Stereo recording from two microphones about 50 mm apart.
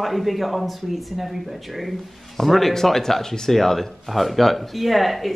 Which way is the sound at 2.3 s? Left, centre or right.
Centre.